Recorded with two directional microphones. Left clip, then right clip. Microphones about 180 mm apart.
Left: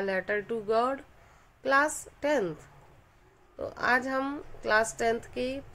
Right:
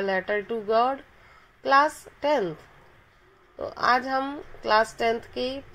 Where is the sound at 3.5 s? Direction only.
5° right (ahead or behind).